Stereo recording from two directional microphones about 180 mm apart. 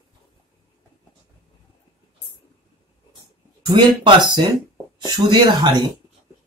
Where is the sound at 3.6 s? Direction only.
25° right (ahead or behind).